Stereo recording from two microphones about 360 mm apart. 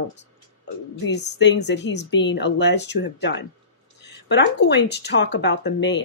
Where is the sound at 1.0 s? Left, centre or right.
Left.